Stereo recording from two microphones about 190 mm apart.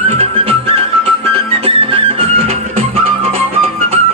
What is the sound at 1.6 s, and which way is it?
Music, 30° right (ahead or behind).